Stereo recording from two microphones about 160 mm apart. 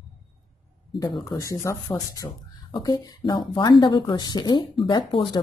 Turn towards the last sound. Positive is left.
turn(degrees=30)  # may be behind; listen again after turning